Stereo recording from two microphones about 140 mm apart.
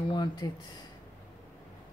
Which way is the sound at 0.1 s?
30° left (ahead or behind).